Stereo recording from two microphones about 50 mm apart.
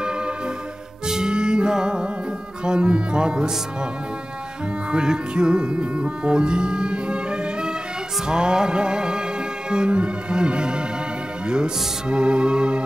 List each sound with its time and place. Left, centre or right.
1.0 s music: centre
4.9 s music: centre